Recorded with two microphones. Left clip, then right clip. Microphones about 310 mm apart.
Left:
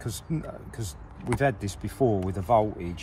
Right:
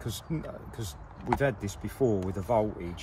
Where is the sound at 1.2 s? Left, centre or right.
Centre.